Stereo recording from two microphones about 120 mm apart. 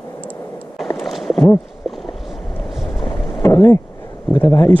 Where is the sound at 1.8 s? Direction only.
Centre (ahead or behind).